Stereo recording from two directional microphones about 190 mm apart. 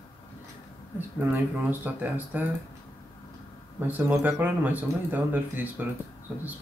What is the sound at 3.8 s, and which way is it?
Speech, 10° right (ahead or behind).